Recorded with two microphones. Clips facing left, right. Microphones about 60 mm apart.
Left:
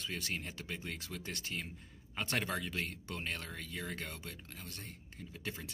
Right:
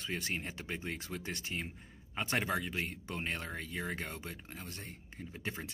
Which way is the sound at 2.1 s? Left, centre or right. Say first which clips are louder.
Right 3 dB; centre.